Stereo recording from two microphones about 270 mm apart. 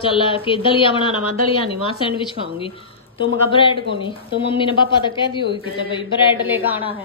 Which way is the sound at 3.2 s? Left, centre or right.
Centre.